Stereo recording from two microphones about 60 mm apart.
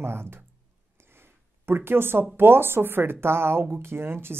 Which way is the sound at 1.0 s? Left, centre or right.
Right.